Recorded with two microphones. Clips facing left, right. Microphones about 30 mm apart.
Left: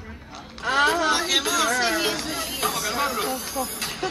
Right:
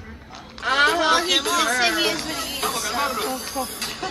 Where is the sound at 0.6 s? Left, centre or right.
Right.